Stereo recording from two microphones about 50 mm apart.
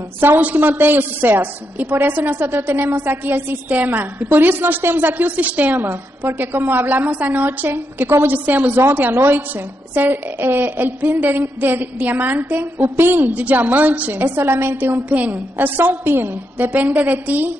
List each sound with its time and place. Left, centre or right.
0.4 s a woman's voice: right
5.9 s a woman's voice: right
9.1 s a woman's voice: right
11.1 s a woman's voice: right
15.0 s a woman's voice: right
15.5 s a woman's voice: right
16.7 s a woman's voice: right